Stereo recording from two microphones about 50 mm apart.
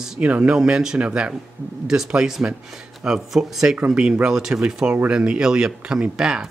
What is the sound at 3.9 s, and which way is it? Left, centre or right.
Speech, centre.